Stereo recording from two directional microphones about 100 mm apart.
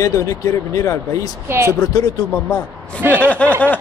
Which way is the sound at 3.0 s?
20° right (ahead or behind).